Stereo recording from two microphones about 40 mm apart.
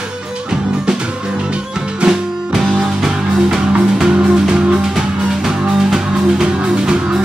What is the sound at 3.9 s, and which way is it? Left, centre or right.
Music, right.